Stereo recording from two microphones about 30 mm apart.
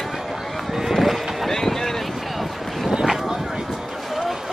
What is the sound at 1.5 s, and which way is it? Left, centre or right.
Boat, centre.